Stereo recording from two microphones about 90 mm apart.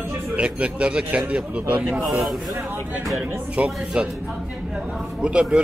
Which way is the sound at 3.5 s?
15° right (ahead or behind).